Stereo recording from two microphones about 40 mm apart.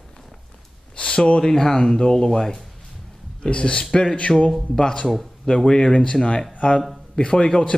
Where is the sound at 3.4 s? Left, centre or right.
Left.